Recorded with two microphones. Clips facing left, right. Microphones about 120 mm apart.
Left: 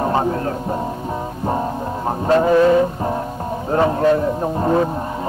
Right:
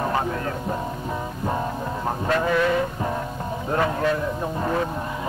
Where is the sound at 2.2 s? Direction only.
30° left (ahead or behind).